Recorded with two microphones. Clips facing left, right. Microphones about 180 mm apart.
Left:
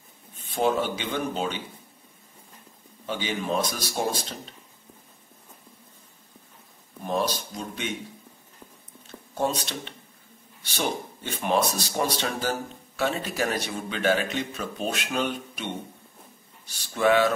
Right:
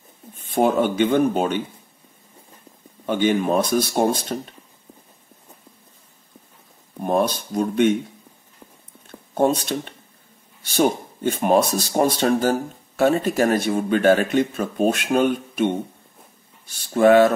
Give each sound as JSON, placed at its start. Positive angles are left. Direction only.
{"t": 0.4, "sound": "a man's voice", "side_deg": -55}
{"t": 3.1, "sound": "a man's voice", "side_deg": -55}
{"t": 7.0, "sound": "speech", "side_deg": -55}
{"t": 9.3, "sound": "a man's voice", "side_deg": -55}